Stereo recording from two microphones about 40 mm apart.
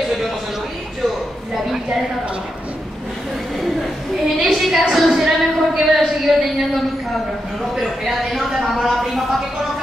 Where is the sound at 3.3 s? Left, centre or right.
Centre.